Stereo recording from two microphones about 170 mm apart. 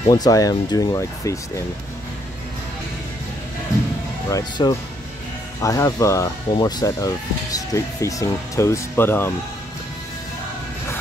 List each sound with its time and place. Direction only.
0.1 s speech: 20° left (ahead or behind)
4.3 s speech: 20° left (ahead or behind)